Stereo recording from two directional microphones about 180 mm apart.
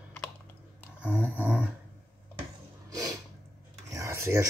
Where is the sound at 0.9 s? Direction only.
5° right (ahead or behind).